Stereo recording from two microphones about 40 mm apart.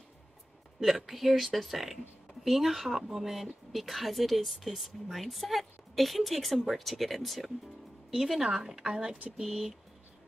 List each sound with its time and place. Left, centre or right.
0.7 s speech: centre
8.1 s speech: centre